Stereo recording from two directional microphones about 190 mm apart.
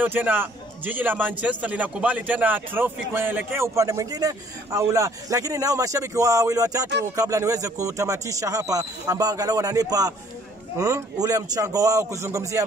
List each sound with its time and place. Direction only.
0.0 s a man's voice: 10° right (ahead or behind)